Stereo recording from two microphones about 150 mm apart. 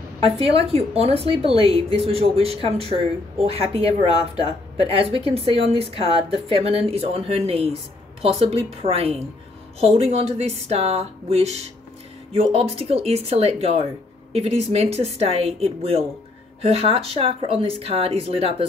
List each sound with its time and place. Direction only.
0.2 s a woman's voice: 40° right (ahead or behind)
4.9 s a woman's voice: 40° right (ahead or behind)